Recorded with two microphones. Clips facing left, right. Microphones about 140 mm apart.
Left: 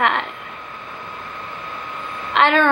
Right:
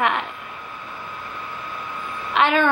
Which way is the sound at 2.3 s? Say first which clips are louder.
Left 2 dB; 60° left (ahead or behind).